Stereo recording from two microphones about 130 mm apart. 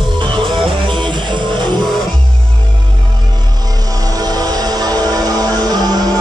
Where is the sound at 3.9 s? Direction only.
30° right (ahead or behind).